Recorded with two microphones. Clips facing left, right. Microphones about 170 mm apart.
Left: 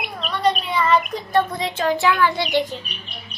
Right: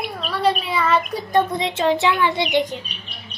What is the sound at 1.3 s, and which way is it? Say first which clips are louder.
Speech: right 1 dB; 25° right (ahead or behind).